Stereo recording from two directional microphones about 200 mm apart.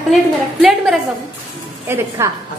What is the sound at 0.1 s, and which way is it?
Speech, centre (ahead or behind).